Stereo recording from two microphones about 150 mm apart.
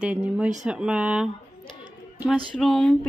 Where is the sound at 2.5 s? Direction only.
Centre (ahead or behind).